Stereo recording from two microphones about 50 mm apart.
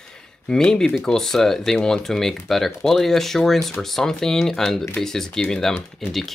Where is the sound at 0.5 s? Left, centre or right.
Centre.